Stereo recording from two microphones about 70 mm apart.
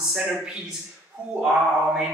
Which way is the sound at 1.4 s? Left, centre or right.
Centre.